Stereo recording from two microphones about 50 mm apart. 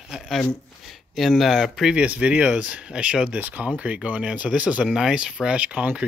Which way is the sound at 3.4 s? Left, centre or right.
Right.